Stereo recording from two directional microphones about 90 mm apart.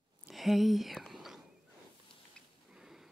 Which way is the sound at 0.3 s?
Centre (ahead or behind).